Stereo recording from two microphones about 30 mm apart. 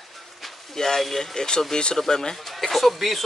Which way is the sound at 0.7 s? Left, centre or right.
Centre.